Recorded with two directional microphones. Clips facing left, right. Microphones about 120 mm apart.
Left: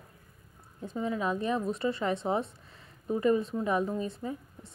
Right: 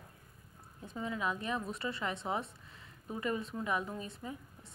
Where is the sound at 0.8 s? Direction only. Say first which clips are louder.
Left 6 dB; 30° left (ahead or behind).